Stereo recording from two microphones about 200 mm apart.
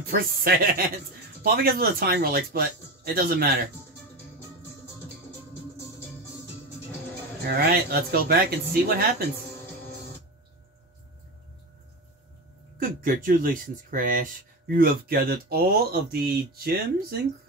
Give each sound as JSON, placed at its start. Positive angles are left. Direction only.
{"t": 0.1, "sound": "speech", "side_deg": -50}
{"t": 7.4, "sound": "speech", "side_deg": -50}
{"t": 12.7, "sound": "speech", "side_deg": -45}